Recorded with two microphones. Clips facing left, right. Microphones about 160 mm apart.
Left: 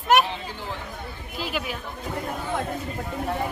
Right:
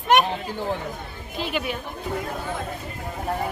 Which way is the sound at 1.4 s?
5° left (ahead or behind).